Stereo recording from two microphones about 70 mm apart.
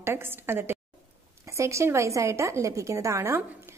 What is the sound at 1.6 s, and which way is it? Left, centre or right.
A woman's voice, right.